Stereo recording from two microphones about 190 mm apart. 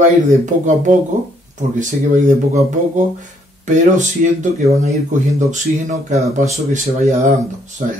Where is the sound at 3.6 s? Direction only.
40° right (ahead or behind).